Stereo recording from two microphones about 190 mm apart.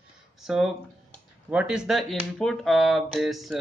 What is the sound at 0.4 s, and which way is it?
Speech, centre (ahead or behind).